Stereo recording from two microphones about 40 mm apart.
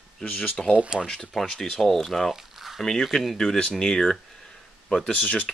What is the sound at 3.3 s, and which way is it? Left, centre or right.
Speech, left.